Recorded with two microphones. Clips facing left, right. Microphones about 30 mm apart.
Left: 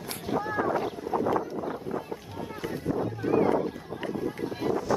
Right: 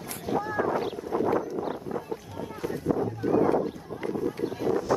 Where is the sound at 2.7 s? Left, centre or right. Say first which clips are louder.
Right 3 dB; left.